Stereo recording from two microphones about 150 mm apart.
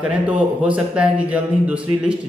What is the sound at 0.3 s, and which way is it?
A man's voice, 10° right (ahead or behind).